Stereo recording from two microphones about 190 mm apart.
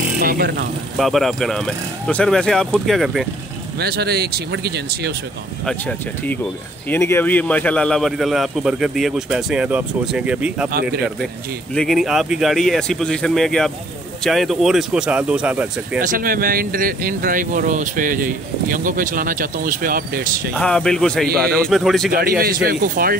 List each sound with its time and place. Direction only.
0.2 s speech: 55° right (ahead or behind)
0.9 s a man's voice: centre (ahead or behind)
3.8 s speech: 55° right (ahead or behind)
5.7 s a man's voice: 5° left (ahead or behind)
10.7 s speech: 55° right (ahead or behind)
11.7 s a man's voice: 5° left (ahead or behind)
16.1 s speech: 50° right (ahead or behind)
20.5 s a man's voice: 5° left (ahead or behind)
22.1 s speech: 50° right (ahead or behind)